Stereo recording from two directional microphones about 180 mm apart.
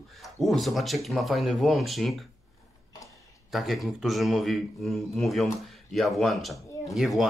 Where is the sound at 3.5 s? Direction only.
Centre (ahead or behind).